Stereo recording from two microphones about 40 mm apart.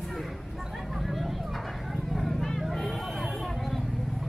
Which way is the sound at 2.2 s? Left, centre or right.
Centre.